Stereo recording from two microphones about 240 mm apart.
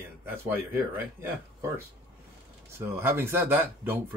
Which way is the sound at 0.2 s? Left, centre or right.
Centre.